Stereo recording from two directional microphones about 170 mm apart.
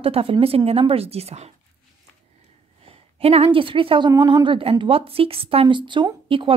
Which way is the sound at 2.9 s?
35° right (ahead or behind).